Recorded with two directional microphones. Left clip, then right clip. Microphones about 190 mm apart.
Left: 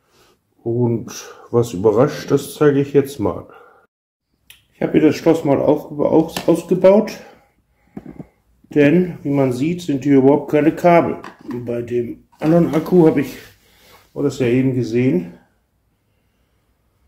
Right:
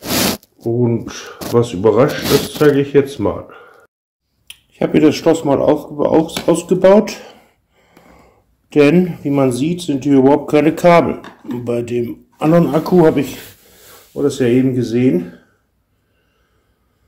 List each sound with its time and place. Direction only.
0.7 s speech: 10° right (ahead or behind)
4.5 s finger snapping: 25° right (ahead or behind)
5.1 s speech: 15° right (ahead or behind)
6.8 s speech: 25° right (ahead or behind)
8.6 s speech: 30° right (ahead or behind)
12.4 s speech: 15° right (ahead or behind)